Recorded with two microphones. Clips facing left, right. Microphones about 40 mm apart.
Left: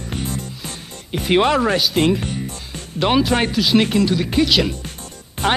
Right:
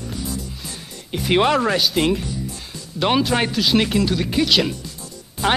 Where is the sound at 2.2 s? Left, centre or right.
Left.